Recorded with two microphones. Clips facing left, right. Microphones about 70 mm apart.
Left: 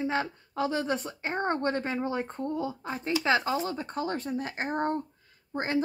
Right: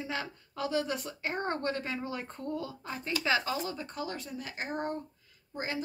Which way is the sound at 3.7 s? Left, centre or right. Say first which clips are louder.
Left 6 dB; left.